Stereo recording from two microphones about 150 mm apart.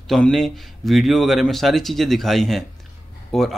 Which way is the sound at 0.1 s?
Centre (ahead or behind).